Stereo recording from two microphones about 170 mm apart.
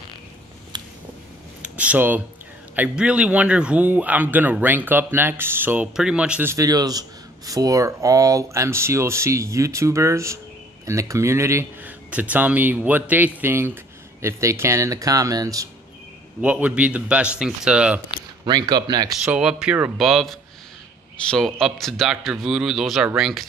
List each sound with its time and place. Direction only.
0.7 s a sound: 25° right (ahead or behind)
1.6 s speech: 5° right (ahead or behind)
6.5 s speech: 20° right (ahead or behind)
16.3 s speech: 5° right (ahead or behind)
18.4 s speech: 25° right (ahead or behind)
19.2 s speech: 5° right (ahead or behind)